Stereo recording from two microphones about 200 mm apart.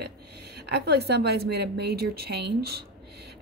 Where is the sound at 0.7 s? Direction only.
55° right (ahead or behind).